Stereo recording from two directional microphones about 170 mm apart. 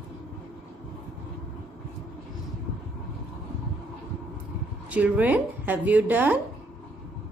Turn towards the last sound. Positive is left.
turn(degrees=-10)  # may be behind; listen again after turning